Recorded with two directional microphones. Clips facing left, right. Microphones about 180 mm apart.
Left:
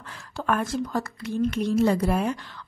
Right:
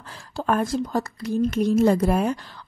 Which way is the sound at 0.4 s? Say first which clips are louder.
Right 3 dB; 30° right (ahead or behind).